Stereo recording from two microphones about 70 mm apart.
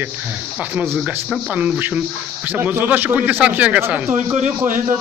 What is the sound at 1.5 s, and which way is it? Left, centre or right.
A man's voice, right.